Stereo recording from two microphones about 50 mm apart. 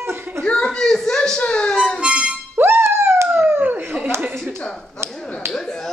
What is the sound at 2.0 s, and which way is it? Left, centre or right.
Music, right.